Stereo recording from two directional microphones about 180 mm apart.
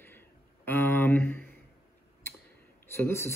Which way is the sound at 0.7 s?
10° left (ahead or behind).